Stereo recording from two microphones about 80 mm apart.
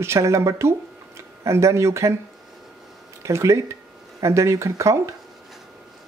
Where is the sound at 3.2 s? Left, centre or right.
Right.